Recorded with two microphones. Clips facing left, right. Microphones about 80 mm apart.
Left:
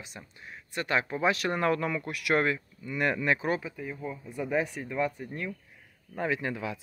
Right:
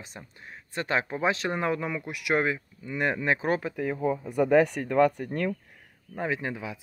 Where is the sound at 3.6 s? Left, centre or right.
Right.